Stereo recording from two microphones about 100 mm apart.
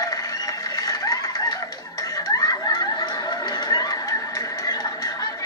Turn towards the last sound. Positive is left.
turn(degrees=35)  # may be behind; listen again after turning